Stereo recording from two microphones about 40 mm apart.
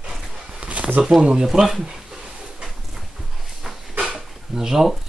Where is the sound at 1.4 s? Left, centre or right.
Centre.